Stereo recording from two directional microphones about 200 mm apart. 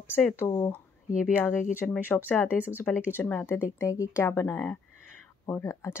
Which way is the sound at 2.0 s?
10° left (ahead or behind).